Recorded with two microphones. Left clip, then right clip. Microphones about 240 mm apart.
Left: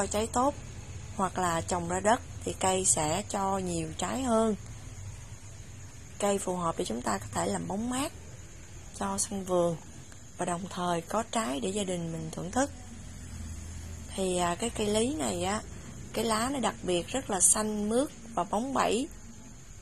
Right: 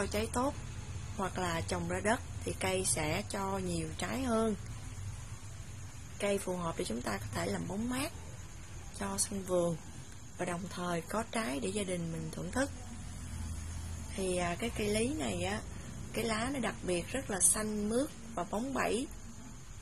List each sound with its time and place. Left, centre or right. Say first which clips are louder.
0.0 s a woman's voice: left 6 dB; centre
6.1 s a woman's voice: left 5 dB; centre
14.1 s a woman's voice: left 5 dB; centre